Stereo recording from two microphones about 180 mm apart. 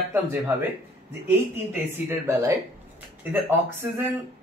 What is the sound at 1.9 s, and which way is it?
Speech, 15° right (ahead or behind).